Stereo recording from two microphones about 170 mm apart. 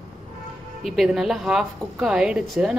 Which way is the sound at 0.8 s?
Centre (ahead or behind).